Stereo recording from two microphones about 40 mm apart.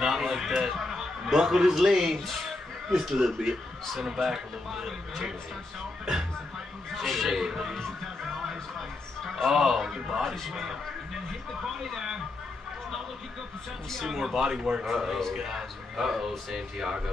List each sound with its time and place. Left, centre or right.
0.0 s a sound: centre
0.8 s a man's voice: centre
7.0 s speech: centre
7.7 s music: centre
9.2 s a man's voice: centre
10.2 s a man's voice: centre
10.5 s a man's voice: centre
14.0 s a man's voice: centre